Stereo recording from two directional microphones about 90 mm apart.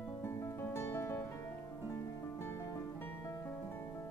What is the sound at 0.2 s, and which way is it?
Music, 30° left (ahead or behind).